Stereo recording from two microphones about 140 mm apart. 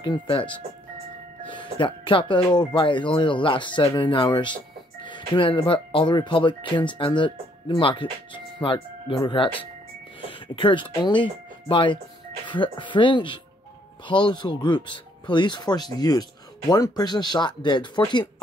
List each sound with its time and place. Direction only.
0.0 s speech: 35° left (ahead or behind)